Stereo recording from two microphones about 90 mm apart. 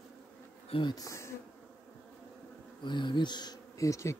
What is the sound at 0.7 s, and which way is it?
Speech, 75° left (ahead or behind).